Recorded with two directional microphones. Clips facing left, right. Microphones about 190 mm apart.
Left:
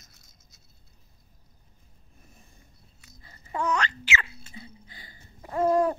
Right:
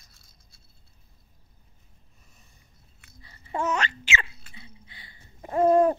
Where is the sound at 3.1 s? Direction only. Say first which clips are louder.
Right 1 dB; 40° left (ahead or behind).